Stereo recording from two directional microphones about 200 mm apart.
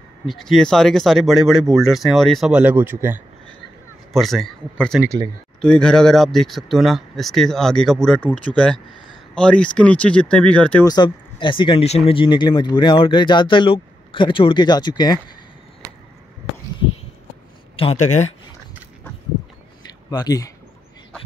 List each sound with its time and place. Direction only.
0.3 s speech: centre (ahead or behind)
4.1 s speech: centre (ahead or behind)
5.0 s speech: 15° right (ahead or behind)
5.6 s speech: 5° left (ahead or behind)
10.9 s speech: 20° left (ahead or behind)
17.7 s speech: 30° left (ahead or behind)
19.9 s a sound: 20° left (ahead or behind)